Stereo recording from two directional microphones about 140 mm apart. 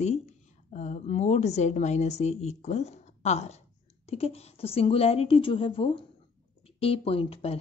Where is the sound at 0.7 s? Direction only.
55° left (ahead or behind).